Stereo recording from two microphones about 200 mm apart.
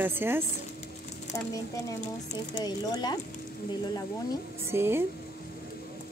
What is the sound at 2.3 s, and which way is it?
Speech, 20° left (ahead or behind).